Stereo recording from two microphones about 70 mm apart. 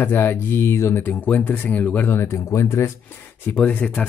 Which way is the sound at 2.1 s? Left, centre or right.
Left.